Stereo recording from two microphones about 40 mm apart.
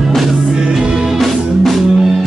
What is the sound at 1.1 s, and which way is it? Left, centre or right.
Music, centre.